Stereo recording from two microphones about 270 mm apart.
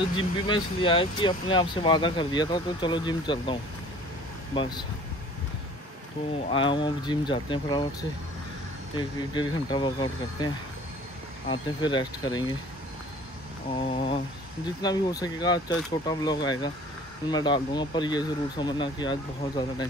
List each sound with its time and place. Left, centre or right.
0.1 s speech: centre
4.6 s speech: centre
6.5 s speech: centre
13.8 s a sound: left
14.8 s speech: centre